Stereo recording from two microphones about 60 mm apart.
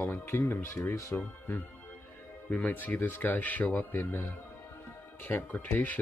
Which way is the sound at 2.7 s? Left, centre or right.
Left.